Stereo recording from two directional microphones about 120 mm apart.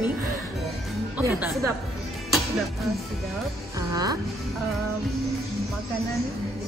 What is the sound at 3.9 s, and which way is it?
Speech, 30° right (ahead or behind).